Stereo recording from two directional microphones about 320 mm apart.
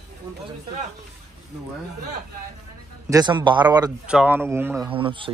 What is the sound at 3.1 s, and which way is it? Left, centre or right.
Speech, centre.